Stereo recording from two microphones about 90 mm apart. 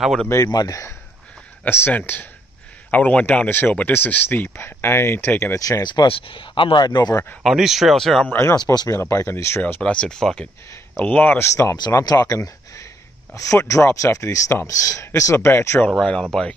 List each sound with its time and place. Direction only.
0.0 s speech: centre (ahead or behind)
0.5 s speech: 45° left (ahead or behind)
1.6 s speech: 25° left (ahead or behind)
5.6 s speech: 40° left (ahead or behind)
6.0 s speech: 85° left; by 7.2 s 50° left (ahead or behind)
7.4 s speech: 5° right (ahead or behind)
8.3 s speech: 30° left (ahead or behind)
9.8 s speech: 10° left (ahead or behind)
11.3 s speech: 30° left (ahead or behind)
16.1 s speech: 5° left (ahead or behind)